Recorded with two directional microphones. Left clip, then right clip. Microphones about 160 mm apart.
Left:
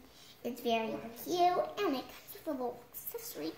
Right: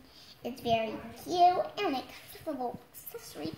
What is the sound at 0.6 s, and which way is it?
A child's voice, 20° left (ahead or behind).